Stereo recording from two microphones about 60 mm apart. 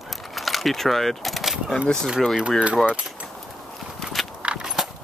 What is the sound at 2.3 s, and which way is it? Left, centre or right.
Speech, centre.